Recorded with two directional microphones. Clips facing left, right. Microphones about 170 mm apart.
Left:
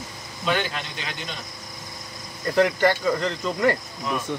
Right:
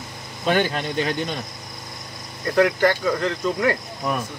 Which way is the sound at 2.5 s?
Centre (ahead or behind).